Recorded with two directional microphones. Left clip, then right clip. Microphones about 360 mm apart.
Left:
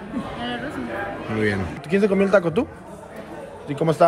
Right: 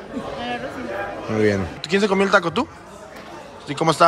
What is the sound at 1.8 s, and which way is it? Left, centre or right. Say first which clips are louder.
Speech: right 1 dB; centre.